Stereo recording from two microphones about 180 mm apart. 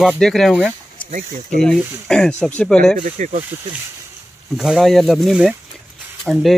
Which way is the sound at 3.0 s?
40° right (ahead or behind).